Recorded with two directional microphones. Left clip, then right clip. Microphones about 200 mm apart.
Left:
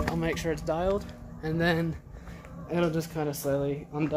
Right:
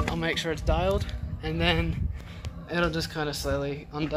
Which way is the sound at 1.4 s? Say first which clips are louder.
Right 1 dB; 15° left (ahead or behind).